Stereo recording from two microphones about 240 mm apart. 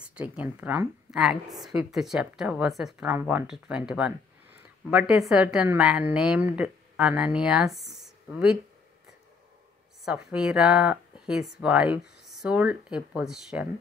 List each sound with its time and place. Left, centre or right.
0.0 s a woman's voice: centre
10.0 s a woman's voice: centre